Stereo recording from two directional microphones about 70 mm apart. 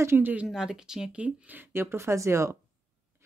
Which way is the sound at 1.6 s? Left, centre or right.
Right.